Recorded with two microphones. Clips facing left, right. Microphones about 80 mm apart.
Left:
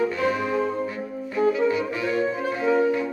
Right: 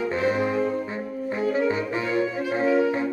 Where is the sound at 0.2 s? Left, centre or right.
Right.